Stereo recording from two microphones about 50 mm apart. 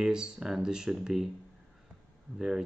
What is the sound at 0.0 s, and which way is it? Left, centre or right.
Speech, centre.